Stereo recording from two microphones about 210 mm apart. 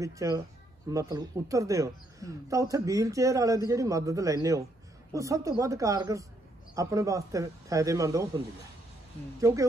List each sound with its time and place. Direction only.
0.0 s a man's voice: 15° right (ahead or behind)
9.4 s a man's voice: 15° right (ahead or behind)